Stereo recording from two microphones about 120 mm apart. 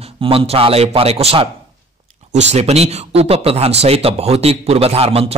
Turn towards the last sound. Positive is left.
turn(degrees=-55)  # may be behind; listen again after turning